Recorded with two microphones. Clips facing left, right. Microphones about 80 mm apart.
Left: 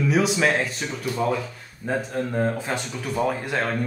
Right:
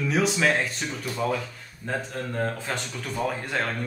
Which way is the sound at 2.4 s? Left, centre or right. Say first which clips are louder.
Left 2 dB; centre.